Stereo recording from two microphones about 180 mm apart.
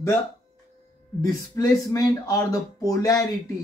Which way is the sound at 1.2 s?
20° left (ahead or behind).